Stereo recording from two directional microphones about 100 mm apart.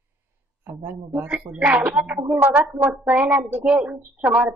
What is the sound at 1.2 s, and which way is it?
A woman's voice, 15° right (ahead or behind).